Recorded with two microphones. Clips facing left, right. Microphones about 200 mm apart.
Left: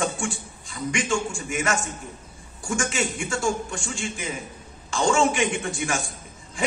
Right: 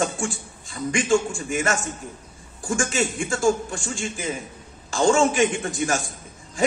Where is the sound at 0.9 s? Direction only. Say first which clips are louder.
Right 6 dB; 35° right (ahead or behind).